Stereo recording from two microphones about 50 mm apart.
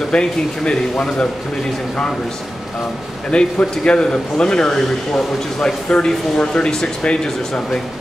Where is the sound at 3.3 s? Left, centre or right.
Centre.